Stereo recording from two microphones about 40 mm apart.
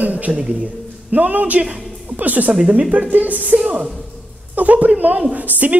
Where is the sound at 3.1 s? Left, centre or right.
Right.